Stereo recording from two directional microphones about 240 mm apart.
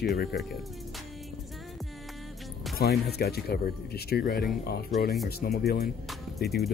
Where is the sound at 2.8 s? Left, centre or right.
Left.